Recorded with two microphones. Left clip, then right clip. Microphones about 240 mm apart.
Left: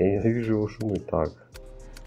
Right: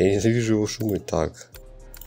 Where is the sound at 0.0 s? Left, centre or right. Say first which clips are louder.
Right 3 dB; right.